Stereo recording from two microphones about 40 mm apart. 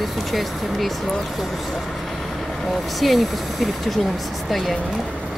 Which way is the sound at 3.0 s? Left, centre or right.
Centre.